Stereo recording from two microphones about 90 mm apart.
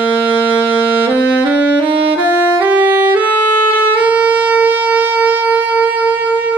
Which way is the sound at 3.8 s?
15° right (ahead or behind).